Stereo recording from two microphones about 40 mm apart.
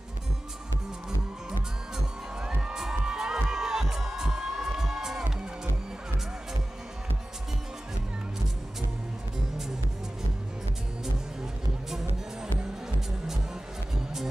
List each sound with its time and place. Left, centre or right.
2.4 s crowd: centre
3.5 s music: centre